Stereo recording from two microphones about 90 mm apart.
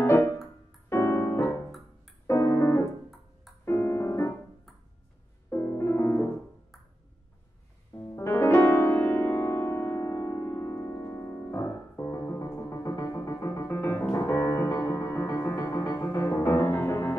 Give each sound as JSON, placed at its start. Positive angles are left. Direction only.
{"t": 0.0, "sound": "music", "side_deg": 20}
{"t": 5.5, "sound": "music", "side_deg": 25}
{"t": 8.2, "sound": "music", "side_deg": 30}